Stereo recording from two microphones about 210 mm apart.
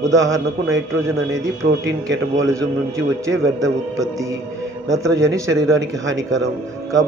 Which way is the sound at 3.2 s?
15° right (ahead or behind).